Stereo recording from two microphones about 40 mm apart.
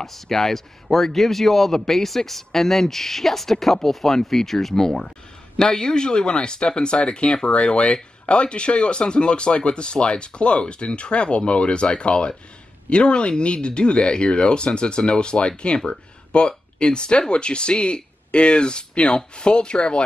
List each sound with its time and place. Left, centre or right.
0.0 s speech: centre; by 20.0 s left